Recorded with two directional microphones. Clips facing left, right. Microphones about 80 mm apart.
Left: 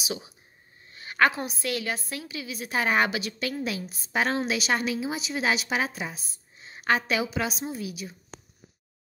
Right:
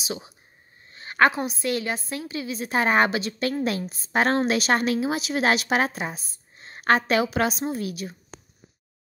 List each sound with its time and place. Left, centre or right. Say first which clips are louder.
0.0 s a woman's voice: right 1 dB; right